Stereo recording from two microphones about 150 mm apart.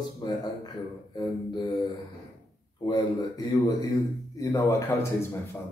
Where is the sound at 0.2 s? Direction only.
30° left (ahead or behind).